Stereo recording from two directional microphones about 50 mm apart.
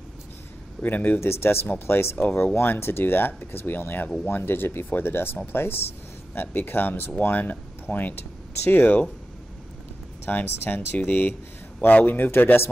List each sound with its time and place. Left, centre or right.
0.8 s speech: left
1.2 s speech: left
10.2 s speech: left
11.9 s speech: left
12.2 s speech: left